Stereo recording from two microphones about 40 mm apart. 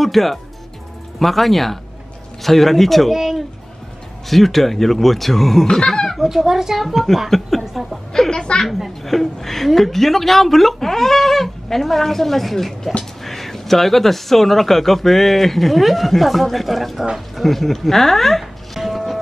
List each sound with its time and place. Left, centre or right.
0.0 s speech: centre
3.1 s a sound: centre
4.3 s speech: centre
5.7 s dog: centre
6.2 s a woman's voice: centre
8.1 s speech: centre
8.6 s speech: centre